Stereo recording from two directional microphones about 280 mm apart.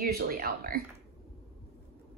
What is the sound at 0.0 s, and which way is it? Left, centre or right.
Speech, right.